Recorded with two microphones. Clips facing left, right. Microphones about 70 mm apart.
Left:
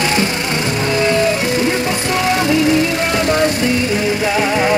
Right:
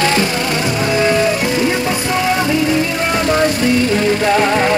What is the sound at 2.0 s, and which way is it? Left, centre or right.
Music, right.